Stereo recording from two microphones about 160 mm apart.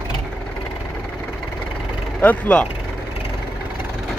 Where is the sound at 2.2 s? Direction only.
10° left (ahead or behind).